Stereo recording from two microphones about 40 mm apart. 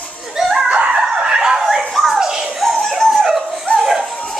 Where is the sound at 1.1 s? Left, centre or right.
Right.